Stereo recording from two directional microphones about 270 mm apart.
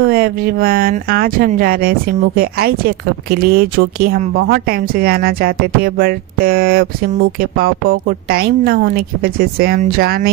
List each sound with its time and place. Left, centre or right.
0.0 s speech: right